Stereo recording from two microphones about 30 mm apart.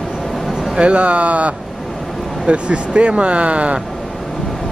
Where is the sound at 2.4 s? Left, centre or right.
Right.